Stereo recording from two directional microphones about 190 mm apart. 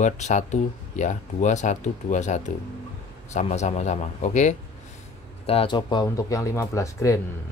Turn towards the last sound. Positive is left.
turn(degrees=15)  # may be behind; listen again after turning